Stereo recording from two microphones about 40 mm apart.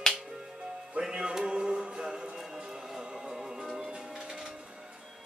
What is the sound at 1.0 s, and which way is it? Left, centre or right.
Music, centre.